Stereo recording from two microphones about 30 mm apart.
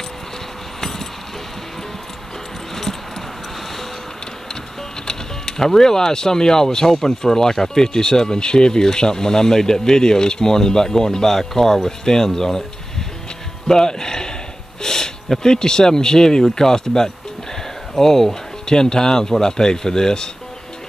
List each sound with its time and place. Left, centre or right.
0.7 s a sound: centre
2.7 s mouse: centre
5.0 s speech: centre
13.7 s speech: left
14.8 s a sound: centre
15.4 s speech: left